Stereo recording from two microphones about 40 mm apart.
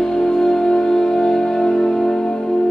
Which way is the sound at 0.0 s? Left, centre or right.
Centre.